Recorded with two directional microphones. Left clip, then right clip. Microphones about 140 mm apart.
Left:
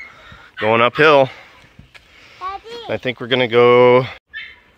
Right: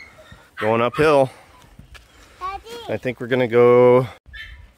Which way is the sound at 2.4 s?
20° left (ahead or behind).